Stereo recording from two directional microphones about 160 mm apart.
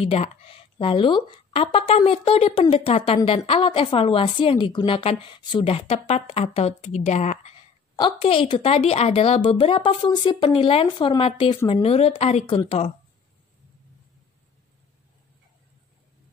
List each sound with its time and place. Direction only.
0.0 s a woman's voice: 40° left (ahead or behind)
7.9 s a woman's voice: 35° left (ahead or behind)